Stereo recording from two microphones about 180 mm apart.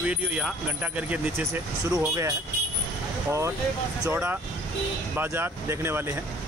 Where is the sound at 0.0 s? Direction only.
5° right (ahead or behind).